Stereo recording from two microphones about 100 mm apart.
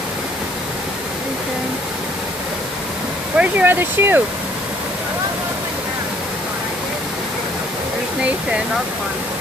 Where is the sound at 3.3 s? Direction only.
15° right (ahead or behind).